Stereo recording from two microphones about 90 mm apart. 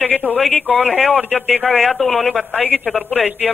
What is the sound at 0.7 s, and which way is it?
A woman's voice, 10° left (ahead or behind).